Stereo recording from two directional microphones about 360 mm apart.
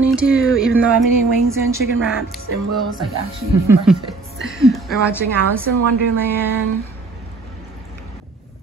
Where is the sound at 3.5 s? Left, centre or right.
Centre.